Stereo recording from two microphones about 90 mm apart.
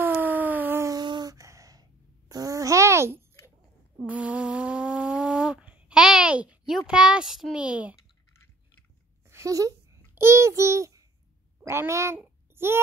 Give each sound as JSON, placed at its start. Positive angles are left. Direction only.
{"t": 0.0, "sound": "a sound", "side_deg": -20}
{"t": 1.0, "sound": "babbling", "side_deg": -50}
{"t": 4.0, "sound": "a sound", "side_deg": -15}
{"t": 7.5, "sound": "speech", "side_deg": -15}
{"t": 9.3, "sound": "speech", "side_deg": -35}
{"t": 10.1, "sound": "a child's voice", "side_deg": -30}
{"t": 12.2, "sound": "child singing", "side_deg": -25}